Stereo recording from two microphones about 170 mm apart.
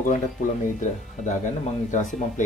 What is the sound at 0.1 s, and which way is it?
Speech, 50° left (ahead or behind).